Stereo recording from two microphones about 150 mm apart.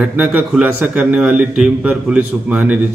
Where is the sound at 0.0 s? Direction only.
5° right (ahead or behind).